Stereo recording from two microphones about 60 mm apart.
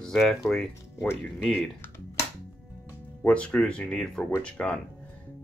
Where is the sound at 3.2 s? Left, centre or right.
Left.